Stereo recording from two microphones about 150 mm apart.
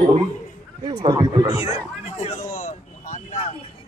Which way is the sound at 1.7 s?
45° left (ahead or behind).